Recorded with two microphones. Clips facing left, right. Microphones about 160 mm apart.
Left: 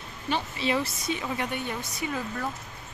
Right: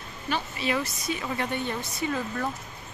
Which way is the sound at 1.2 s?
10° left (ahead or behind).